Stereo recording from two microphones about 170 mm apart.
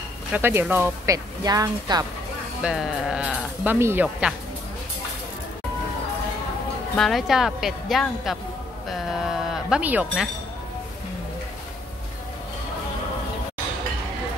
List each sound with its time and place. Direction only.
0.3 s speech: 15° right (ahead or behind)
2.6 s speech: centre (ahead or behind)
7.0 s speech: centre (ahead or behind)